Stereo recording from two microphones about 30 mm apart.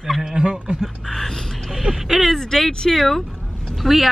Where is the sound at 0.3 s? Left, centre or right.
Right.